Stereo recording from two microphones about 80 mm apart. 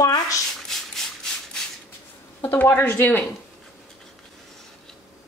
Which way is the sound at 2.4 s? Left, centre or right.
Left.